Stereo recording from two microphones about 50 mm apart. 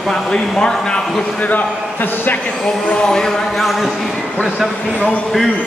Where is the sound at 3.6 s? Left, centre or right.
Centre.